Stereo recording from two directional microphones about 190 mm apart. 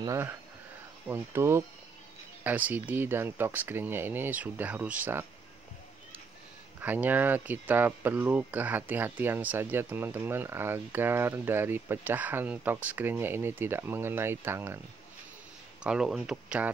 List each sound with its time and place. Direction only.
0.0 s speech: 15° right (ahead or behind)
6.8 s speech: 10° right (ahead or behind)
15.8 s speech: 5° right (ahead or behind)